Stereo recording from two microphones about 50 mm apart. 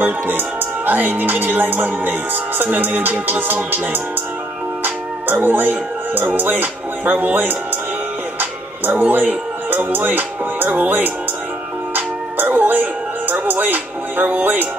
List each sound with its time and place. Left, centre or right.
0.0 s speech: right
8.4 s music: right
9.8 s speech: right
11.9 s music: right